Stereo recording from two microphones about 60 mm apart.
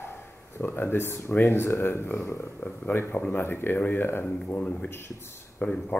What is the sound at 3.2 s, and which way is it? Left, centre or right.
Speech, left.